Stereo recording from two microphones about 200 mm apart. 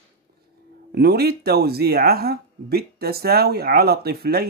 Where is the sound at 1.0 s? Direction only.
50° right (ahead or behind).